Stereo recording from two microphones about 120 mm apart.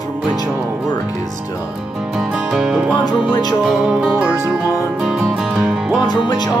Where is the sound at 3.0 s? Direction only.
35° left (ahead or behind).